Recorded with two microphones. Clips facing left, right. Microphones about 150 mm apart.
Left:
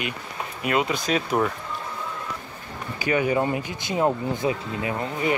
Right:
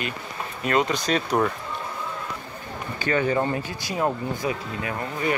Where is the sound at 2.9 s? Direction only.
10° left (ahead or behind).